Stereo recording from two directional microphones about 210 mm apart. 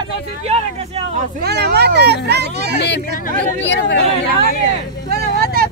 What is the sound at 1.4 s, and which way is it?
A child's voice, 50° right (ahead or behind).